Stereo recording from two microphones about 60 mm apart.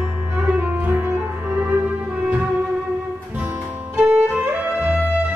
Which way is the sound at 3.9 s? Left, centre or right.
Right.